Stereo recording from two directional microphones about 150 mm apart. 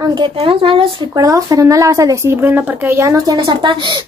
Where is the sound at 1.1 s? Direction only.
25° right (ahead or behind).